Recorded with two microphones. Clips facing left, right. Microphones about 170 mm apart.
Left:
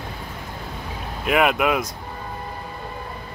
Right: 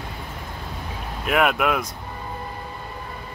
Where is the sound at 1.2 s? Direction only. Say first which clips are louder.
Left 1 dB; 5° left (ahead or behind).